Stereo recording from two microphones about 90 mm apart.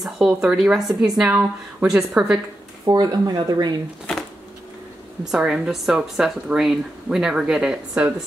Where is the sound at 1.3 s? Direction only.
15° right (ahead or behind).